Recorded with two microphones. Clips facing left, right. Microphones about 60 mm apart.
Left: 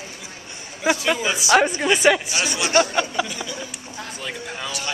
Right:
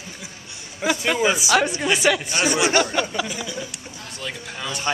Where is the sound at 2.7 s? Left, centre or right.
Left.